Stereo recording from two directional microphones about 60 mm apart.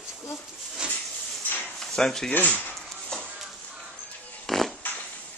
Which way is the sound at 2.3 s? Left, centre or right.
Left.